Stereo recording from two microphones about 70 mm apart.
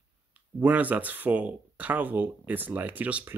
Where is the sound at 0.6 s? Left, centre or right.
Right.